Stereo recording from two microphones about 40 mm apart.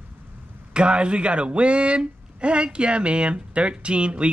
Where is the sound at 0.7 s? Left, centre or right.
Right.